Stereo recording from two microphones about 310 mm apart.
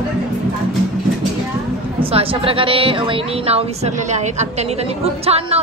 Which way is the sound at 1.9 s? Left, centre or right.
Centre.